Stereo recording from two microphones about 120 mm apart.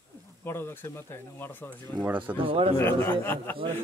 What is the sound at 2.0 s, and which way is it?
Speech, 15° right (ahead or behind).